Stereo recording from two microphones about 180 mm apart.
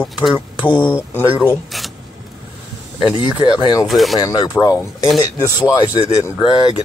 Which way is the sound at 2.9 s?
25° left (ahead or behind).